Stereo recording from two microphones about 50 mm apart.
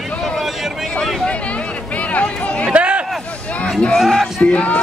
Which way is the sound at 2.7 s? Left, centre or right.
Right.